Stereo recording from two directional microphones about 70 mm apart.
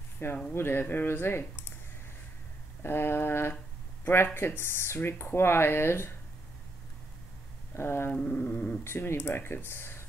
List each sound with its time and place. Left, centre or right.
0.5 s speech: left
2.8 s speech: left
7.7 s speech: left
8.1 s a sound: centre
8.5 s speech: centre
8.8 s speech: left